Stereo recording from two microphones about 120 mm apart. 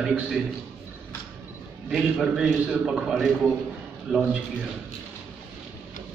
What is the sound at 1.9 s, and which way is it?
A man's voice, centre (ahead or behind).